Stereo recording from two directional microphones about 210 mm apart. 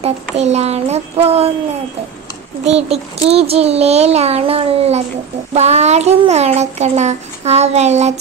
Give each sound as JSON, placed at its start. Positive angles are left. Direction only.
{"t": 0.4, "sound": "speech", "side_deg": -30}
{"t": 2.6, "sound": "a child's voice", "side_deg": -30}